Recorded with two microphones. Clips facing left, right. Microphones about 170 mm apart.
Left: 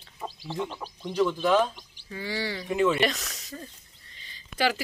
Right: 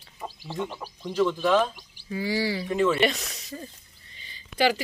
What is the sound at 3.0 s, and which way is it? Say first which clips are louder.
Speech: right 2 dB; centre (ahead or behind).